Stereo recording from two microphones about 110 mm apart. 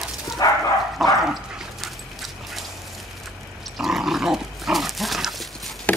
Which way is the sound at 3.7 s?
5° right (ahead or behind).